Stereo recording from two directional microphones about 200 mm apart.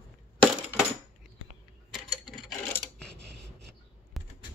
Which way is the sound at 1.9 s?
Centre (ahead or behind).